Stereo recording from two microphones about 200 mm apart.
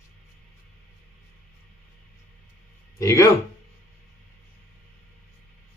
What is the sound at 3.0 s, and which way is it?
Speech, 15° left (ahead or behind).